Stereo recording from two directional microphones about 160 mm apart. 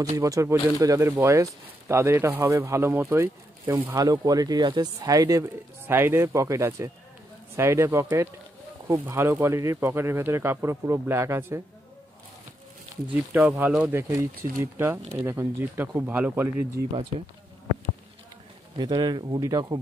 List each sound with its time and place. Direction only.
0.2 s speech: 20° right (ahead or behind)
12.9 s speech: 10° right (ahead or behind)
18.8 s speech: 25° right (ahead or behind)